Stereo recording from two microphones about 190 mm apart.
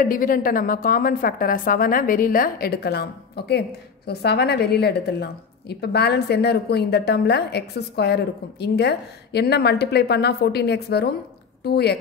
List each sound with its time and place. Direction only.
0.0 s a woman's voice: 50° left (ahead or behind)